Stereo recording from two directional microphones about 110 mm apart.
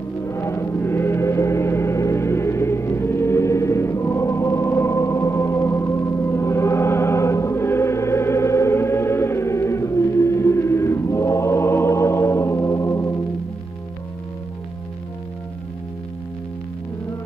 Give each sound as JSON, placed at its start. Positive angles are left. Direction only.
{"t": 0.2, "sound": "gong", "side_deg": 25}